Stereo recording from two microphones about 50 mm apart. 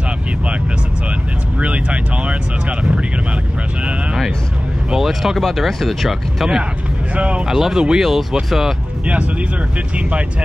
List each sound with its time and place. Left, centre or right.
1.6 s speech: right
4.9 s speech: centre
7.2 s speech: right
7.4 s speech: centre